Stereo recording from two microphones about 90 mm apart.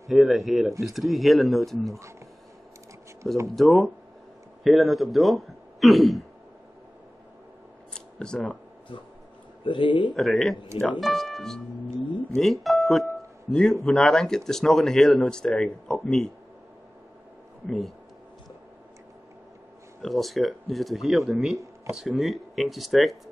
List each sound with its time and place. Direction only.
0.1 s speech: centre (ahead or behind)
3.5 s speech: centre (ahead or behind)
7.9 s camera: 10° left (ahead or behind)
9.7 s speech: 65° left (ahead or behind)
10.1 s speech: centre (ahead or behind)
12.0 s speech: 70° left (ahead or behind)
12.4 s a man's voice: centre (ahead or behind)
17.6 s speech: centre (ahead or behind)
20.0 s speech: centre (ahead or behind)